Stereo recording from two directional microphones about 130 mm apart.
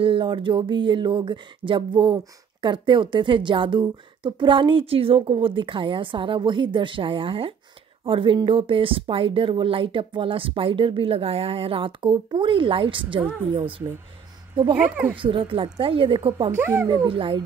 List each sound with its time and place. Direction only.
0.0 s speech: 40° right (ahead or behind)
14.7 s speech: 10° right (ahead or behind)
15.1 s speech: 40° right (ahead or behind)
16.5 s speech: 20° right (ahead or behind)
16.9 s speech: 40° right (ahead or behind)